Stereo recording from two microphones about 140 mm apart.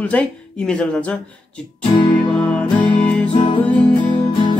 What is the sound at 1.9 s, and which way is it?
Music, 30° left (ahead or behind).